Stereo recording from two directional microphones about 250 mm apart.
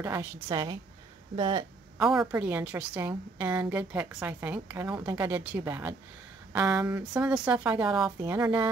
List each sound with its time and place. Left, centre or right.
0.0 s a woman's voice: centre
2.0 s a woman's voice: centre